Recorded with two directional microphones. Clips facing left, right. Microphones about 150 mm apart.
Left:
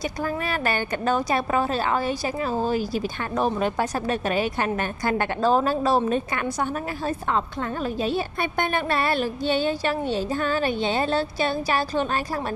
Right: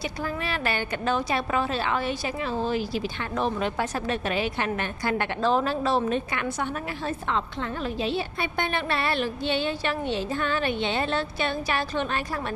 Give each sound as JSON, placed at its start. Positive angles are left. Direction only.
{"t": 0.2, "sound": "a woman's voice", "side_deg": 45}